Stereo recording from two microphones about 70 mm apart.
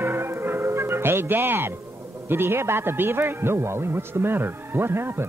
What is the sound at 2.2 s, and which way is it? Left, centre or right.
A man's voice, right.